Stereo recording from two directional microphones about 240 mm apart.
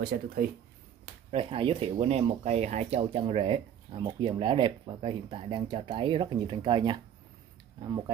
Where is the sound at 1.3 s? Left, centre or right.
Right.